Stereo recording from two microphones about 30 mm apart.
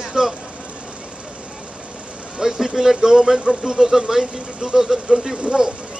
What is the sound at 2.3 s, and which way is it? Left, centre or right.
Speech, centre.